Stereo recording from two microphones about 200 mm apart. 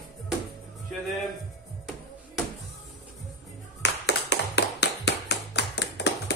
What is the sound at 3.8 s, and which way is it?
Tap, 60° left (ahead or behind).